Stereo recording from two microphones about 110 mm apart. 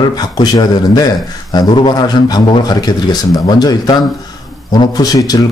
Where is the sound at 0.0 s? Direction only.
35° left (ahead or behind).